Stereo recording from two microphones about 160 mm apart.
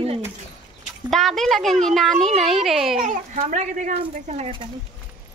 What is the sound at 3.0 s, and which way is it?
Speech, 50° right (ahead or behind).